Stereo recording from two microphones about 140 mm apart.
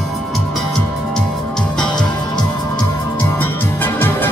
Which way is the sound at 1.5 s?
5° left (ahead or behind).